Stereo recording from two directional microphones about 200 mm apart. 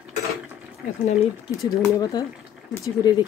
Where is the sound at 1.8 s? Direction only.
20° left (ahead or behind).